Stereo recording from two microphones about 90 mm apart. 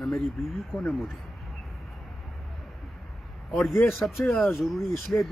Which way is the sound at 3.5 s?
Centre (ahead or behind).